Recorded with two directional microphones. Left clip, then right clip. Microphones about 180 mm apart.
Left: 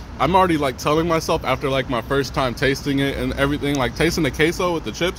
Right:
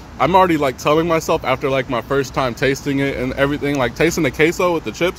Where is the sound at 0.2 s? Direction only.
20° right (ahead or behind).